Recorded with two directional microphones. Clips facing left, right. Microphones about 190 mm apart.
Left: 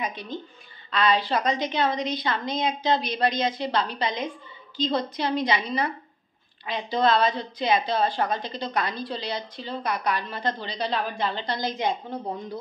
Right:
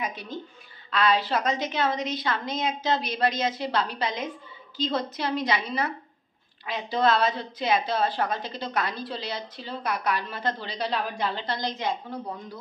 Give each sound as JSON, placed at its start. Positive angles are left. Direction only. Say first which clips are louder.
{"t": 0.0, "sound": "a woman's voice", "louder": "left 1 dB", "side_deg": -5}
{"t": 11.7, "sound": "a woman's voice", "louder": "left 3 dB", "side_deg": 20}